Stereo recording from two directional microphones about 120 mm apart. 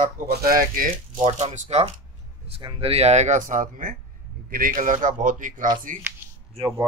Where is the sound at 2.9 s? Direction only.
60° right (ahead or behind); by 6.0 s 90° right.